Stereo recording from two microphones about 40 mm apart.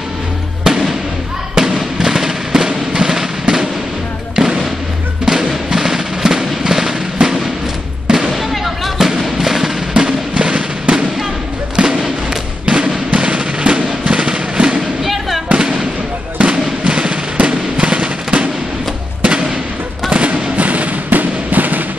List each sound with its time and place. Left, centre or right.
0.7 s fireworks: centre
2.0 s music: centre
4.4 s basketball bounce: centre
5.2 s music: centre
8.1 s basketball bounce: centre
8.4 s music: centre
10.0 s music: right
11.7 s fireworks: right
12.6 s music: right
15.0 s fireworks: centre
15.6 s fireworks: right
16.3 s music: right
19.2 s thump: right
20.1 s music: right